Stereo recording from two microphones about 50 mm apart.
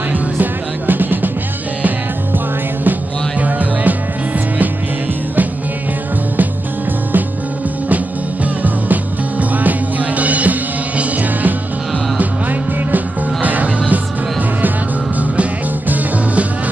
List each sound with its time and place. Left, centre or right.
0.1 s music: right
2.3 s music: right
8.6 s music: right
12.9 s music: right